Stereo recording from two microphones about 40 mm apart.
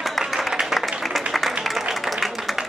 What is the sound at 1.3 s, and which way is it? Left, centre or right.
Applause, centre.